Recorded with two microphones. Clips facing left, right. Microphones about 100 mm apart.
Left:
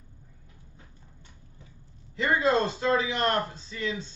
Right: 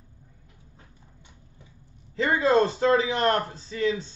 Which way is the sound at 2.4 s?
35° right (ahead or behind).